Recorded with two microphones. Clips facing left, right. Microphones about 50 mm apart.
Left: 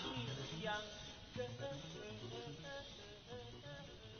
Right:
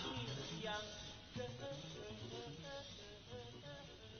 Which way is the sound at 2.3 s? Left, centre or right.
Centre.